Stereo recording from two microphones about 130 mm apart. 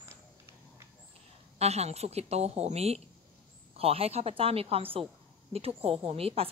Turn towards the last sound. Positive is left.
turn(degrees=-50)  # may be behind; listen again after turning